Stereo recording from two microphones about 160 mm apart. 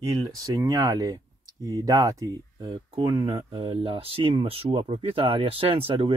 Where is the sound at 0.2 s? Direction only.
20° right (ahead or behind).